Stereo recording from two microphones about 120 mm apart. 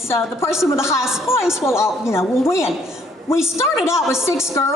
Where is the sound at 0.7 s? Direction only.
25° left (ahead or behind).